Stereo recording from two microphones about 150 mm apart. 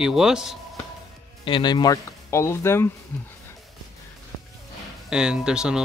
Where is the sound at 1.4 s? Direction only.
30° left (ahead or behind); by 2.9 s 15° left (ahead or behind).